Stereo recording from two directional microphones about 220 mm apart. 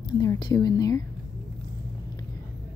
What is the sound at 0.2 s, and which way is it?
Speech, 20° left (ahead or behind).